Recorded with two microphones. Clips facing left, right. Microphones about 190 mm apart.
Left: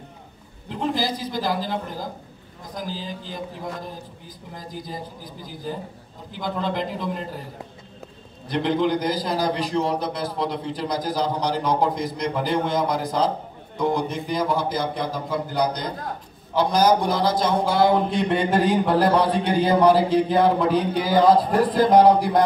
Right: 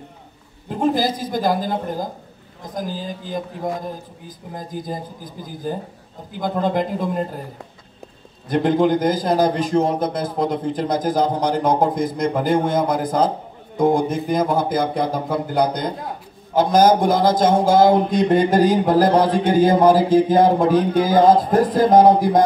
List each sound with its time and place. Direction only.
0.7 s a man's voice: 50° right (ahead or behind)
8.5 s a man's voice: 45° right (ahead or behind)